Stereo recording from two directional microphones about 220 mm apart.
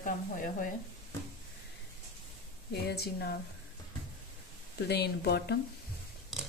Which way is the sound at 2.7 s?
50° left (ahead or behind).